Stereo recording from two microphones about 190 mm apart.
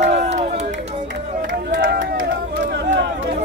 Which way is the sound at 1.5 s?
45° right (ahead or behind).